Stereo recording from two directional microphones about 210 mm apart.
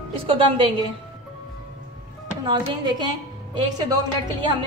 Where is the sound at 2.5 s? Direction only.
20° right (ahead or behind).